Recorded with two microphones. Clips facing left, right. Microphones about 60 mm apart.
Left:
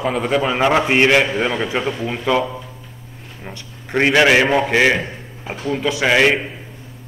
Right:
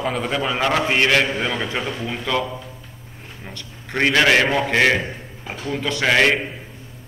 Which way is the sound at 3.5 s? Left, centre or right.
Centre.